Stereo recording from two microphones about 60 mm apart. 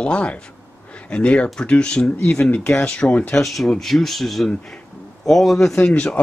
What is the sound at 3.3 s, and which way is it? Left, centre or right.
Speech, centre.